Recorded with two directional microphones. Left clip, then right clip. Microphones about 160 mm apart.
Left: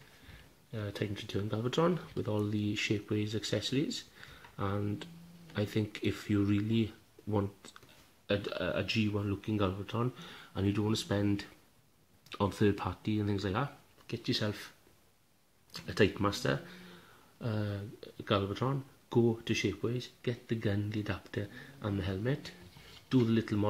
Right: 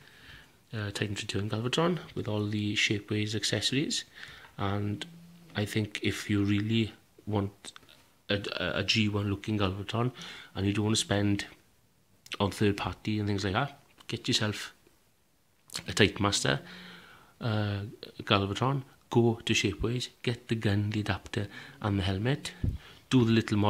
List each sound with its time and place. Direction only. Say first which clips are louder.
0.7 s speech: right 3 dB; 20° right (ahead or behind)
12.5 s speech: right 2 dB; 10° right (ahead or behind); by 14.7 s 25° right (ahead or behind)
15.7 s speech: right 4 dB; 20° right (ahead or behind)